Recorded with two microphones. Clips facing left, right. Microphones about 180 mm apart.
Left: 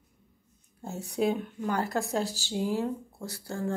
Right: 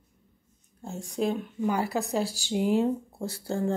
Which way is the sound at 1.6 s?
10° right (ahead or behind).